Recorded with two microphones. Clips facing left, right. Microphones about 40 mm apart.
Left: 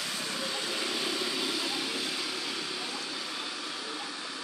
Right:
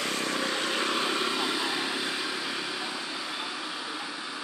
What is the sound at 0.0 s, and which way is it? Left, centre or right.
Vehicle, right.